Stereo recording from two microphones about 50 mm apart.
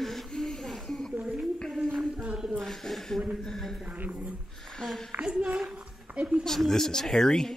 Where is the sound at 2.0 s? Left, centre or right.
Right.